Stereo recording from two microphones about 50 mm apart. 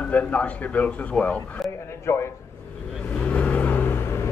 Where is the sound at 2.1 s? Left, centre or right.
Left.